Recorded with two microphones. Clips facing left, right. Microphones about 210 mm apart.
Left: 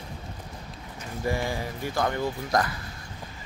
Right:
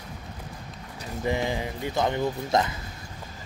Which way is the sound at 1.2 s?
20° right (ahead or behind).